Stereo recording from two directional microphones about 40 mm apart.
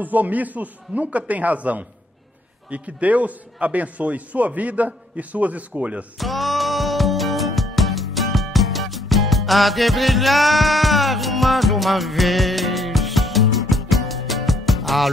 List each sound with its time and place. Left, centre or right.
0.0 s a man's voice: right
6.1 s music: centre